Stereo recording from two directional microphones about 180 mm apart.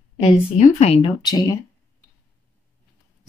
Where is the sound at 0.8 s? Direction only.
35° left (ahead or behind).